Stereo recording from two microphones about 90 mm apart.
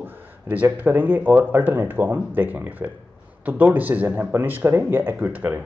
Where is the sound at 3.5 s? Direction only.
20° right (ahead or behind).